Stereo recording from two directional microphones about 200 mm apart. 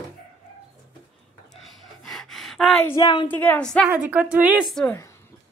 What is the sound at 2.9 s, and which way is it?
Speech, 25° left (ahead or behind).